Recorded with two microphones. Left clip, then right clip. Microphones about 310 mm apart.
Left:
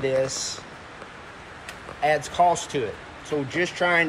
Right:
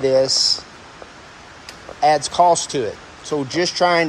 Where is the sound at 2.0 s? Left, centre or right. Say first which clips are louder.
Right 6 dB; right.